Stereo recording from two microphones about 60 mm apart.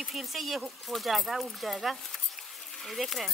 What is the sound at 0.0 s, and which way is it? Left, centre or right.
Speech, centre.